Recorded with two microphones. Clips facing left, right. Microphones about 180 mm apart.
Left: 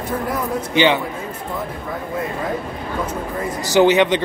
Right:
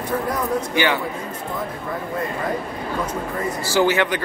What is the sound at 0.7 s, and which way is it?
Speech, 20° left (ahead or behind).